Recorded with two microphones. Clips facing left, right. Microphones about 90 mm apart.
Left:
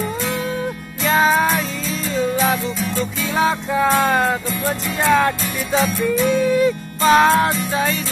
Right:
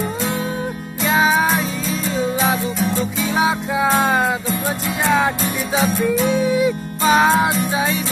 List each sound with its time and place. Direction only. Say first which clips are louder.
1.0 s music: even; 5° right (ahead or behind)
2.0 s music: left 1 dB; 15° right (ahead or behind)
6.1 s music: left 1 dB; 20° right (ahead or behind)
6.4 s music: left 1 dB; 10° right (ahead or behind)